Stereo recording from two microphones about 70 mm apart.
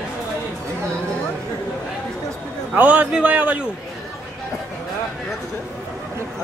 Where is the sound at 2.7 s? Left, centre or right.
Right.